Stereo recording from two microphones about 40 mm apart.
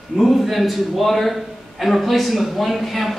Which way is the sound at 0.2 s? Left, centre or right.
Centre.